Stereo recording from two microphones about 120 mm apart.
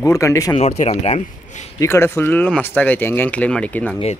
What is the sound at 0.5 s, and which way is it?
Speech, 70° left (ahead or behind).